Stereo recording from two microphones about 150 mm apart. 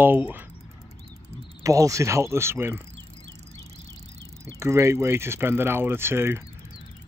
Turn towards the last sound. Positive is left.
turn(degrees=-15)  # may be behind; listen again after turning